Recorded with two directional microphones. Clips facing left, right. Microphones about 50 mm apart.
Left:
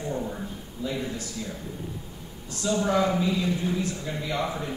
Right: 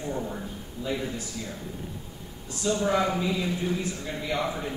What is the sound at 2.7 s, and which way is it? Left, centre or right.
A man's voice, centre.